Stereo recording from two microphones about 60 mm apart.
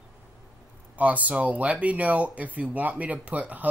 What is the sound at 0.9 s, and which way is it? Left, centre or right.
Speech, right.